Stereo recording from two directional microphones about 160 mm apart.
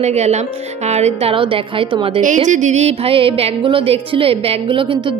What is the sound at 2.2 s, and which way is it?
Music, 50° right (ahead or behind).